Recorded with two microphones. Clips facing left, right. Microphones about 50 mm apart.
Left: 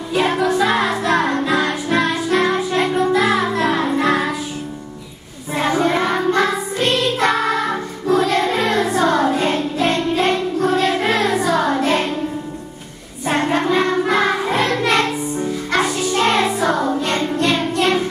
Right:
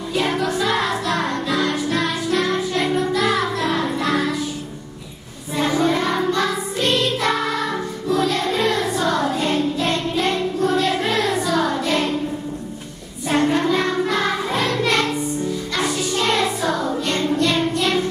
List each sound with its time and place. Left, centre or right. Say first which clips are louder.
0.1 s music: left 4 dB; left
5.6 s music: left 2 dB; left
10.1 s child singing: left 3 dB; left
13.3 s music: left 1 dB; left
16.1 s music: left 4 dB; left